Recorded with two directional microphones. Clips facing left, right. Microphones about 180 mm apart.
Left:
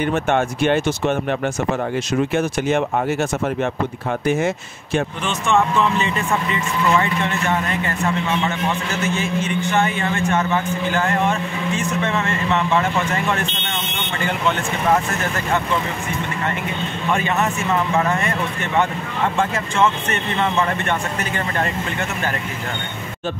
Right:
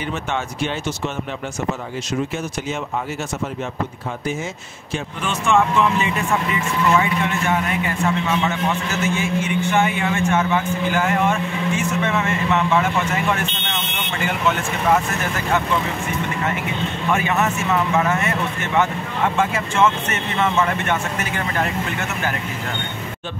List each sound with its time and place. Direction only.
0.3 s speech: 60° left (ahead or behind)
5.2 s speech: 10° right (ahead or behind)
9.0 s speech: 10° right (ahead or behind)
17.1 s speech: 5° right (ahead or behind)
19.5 s speech: 10° right (ahead or behind)
21.2 s speech: 5° right (ahead or behind)